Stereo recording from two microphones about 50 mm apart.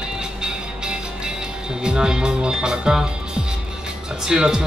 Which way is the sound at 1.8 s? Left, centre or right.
Centre.